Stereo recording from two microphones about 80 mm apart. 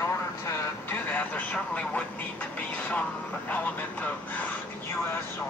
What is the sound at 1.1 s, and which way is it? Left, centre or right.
Speech, centre.